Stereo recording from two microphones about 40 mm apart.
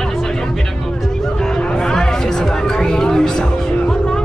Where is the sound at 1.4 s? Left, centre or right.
Centre.